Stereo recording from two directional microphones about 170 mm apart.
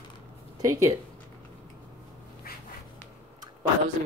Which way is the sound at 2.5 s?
65° left (ahead or behind).